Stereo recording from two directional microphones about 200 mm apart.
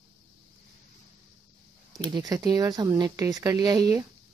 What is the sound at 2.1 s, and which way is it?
Speech, 20° right (ahead or behind).